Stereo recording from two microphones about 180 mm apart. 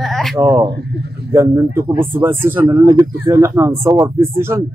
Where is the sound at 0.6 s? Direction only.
70° right (ahead or behind).